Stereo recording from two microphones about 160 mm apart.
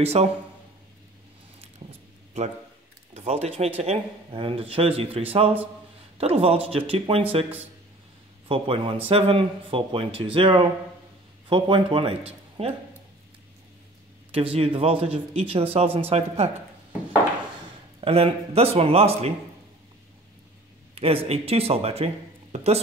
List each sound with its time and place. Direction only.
0.0 s speech: 40° right (ahead or behind)
3.2 s speech: 40° right (ahead or behind)
8.5 s speech: 35° right (ahead or behind)
12.3 s a sound: 40° right (ahead or behind)
14.3 s speech: 35° right (ahead or behind)
18.0 s speech: 40° right (ahead or behind)
20.9 s speech: 35° right (ahead or behind)